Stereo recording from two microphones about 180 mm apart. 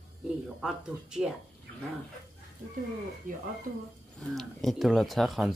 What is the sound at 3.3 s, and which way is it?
Speech, 50° right (ahead or behind).